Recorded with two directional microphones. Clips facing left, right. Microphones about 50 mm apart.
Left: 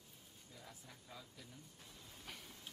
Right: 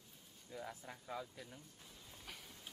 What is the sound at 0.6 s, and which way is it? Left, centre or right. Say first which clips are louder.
Speech: right 10 dB; right.